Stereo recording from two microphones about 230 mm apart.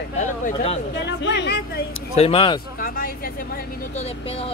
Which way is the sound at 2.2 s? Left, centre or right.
Left.